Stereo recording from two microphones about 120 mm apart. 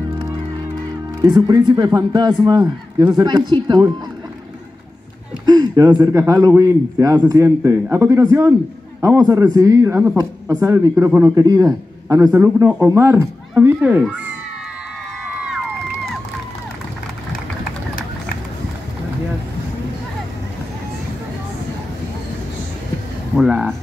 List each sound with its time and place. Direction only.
1.2 s speech: 35° right (ahead or behind)
5.4 s speech: 35° right (ahead or behind); by 14.1 s 10° right (ahead or behind)
23.3 s speech: 5° right (ahead or behind)